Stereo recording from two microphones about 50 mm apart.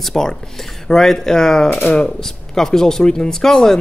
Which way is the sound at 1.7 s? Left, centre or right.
Left.